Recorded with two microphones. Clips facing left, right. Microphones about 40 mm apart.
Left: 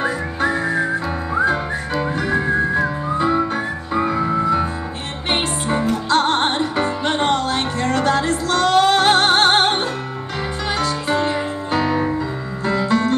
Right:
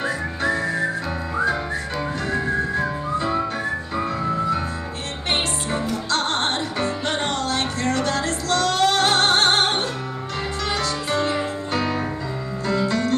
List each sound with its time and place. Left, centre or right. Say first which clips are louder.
0.0 s whistling: left 3 dB; left
3.9 s music: left 8 dB; centre
10.8 s music: left 5 dB; left